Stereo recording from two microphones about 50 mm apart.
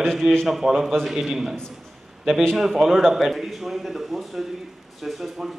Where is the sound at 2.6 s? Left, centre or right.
Centre.